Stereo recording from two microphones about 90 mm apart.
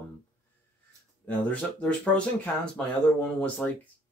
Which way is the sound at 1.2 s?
15° left (ahead or behind).